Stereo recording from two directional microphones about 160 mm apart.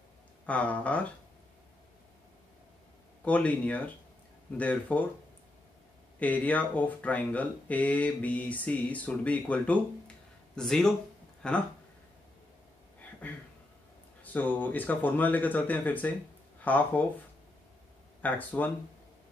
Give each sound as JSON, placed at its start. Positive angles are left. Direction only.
{"t": 0.5, "sound": "speech", "side_deg": 10}
{"t": 3.3, "sound": "speech", "side_deg": 10}
{"t": 6.1, "sound": "speech", "side_deg": 10}
{"t": 13.2, "sound": "speech", "side_deg": 10}
{"t": 18.2, "sound": "speech", "side_deg": 10}